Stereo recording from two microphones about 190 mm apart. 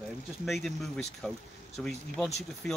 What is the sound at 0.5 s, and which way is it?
Speech, centre (ahead or behind).